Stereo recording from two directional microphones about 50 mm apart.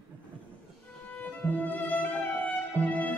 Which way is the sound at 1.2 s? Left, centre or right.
Left.